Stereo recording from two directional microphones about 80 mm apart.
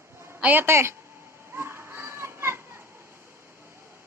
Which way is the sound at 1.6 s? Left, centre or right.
Right.